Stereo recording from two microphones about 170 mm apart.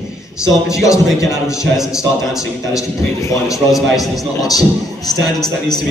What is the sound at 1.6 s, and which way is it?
Speech, centre (ahead or behind).